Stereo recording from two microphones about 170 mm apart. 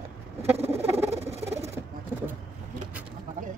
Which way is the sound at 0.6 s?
15° right (ahead or behind).